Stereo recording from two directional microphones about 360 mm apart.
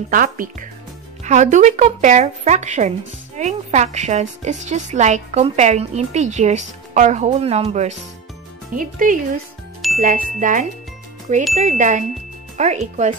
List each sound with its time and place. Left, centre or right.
0.1 s a woman's voice: right